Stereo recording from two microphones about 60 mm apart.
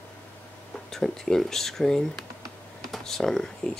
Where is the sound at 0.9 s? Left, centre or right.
Centre.